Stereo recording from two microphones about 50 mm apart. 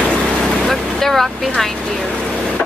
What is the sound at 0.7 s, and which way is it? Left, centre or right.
Vehicle, centre.